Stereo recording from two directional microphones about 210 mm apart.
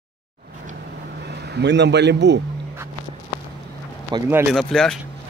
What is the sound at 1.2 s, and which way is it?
A man's voice, 50° right (ahead or behind).